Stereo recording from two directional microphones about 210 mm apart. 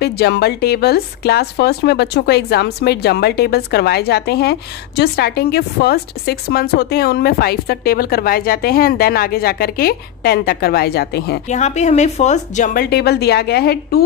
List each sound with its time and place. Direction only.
0.0 s a woman's voice: 50° left (ahead or behind)
11.4 s a woman's voice: 35° left (ahead or behind)
12.9 s a woman's voice: 50° left (ahead or behind)